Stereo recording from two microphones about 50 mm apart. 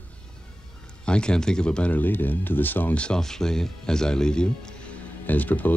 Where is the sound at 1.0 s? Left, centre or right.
Centre.